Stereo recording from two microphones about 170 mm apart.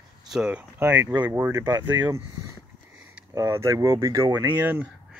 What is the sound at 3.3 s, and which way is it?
Speech, 20° right (ahead or behind).